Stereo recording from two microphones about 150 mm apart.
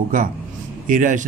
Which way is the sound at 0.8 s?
60° right (ahead or behind).